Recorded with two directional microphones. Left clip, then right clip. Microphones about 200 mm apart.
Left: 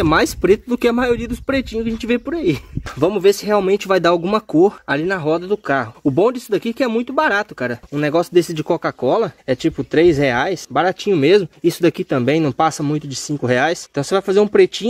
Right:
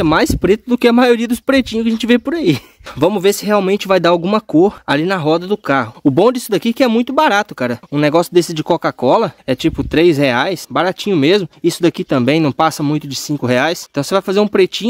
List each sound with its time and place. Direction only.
0.0 s speech: 25° right (ahead or behind)
4.8 s speech: 45° right (ahead or behind)